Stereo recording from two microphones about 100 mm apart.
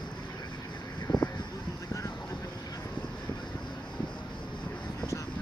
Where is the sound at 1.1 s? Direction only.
45° left (ahead or behind).